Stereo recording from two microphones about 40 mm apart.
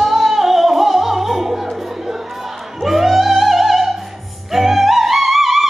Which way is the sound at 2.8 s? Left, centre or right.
Centre.